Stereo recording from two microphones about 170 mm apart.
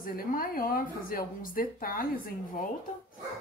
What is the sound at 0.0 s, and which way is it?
Speech, 60° left (ahead or behind).